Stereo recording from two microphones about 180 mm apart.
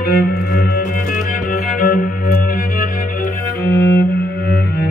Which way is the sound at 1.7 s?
50° left (ahead or behind).